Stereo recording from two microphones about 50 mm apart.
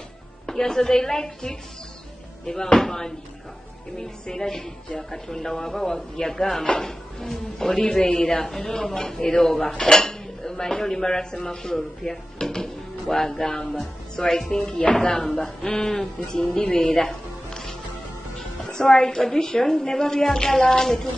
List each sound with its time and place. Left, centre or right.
0.5 s a woman's voice: centre
14.7 s a woman's voice: left
16.5 s music: centre
18.7 s a woman's voice: centre